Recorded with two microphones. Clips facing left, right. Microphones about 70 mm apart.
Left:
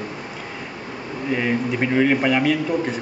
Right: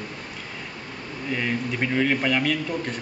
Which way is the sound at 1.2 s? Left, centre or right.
Centre.